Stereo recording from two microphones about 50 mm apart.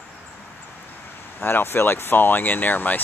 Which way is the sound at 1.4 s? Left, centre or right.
Left.